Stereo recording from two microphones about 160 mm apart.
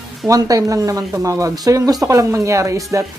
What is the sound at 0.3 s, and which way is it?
Speech, 20° right (ahead or behind).